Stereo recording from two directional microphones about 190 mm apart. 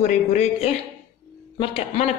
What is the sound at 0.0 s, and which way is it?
Speech, 40° left (ahead or behind).